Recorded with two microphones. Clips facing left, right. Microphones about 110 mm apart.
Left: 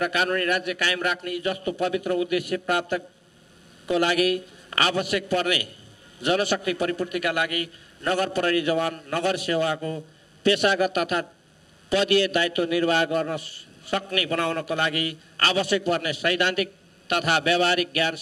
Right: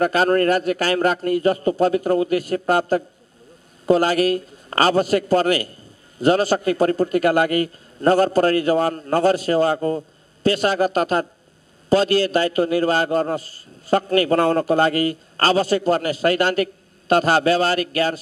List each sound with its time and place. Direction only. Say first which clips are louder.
0.0 s a man's voice: right 8 dB; 40° right (ahead or behind)